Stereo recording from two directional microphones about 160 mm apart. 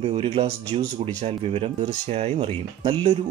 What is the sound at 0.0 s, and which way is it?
Speech, 35° right (ahead or behind).